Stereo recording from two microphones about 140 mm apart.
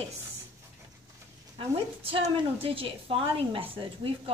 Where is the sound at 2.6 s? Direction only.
40° right (ahead or behind).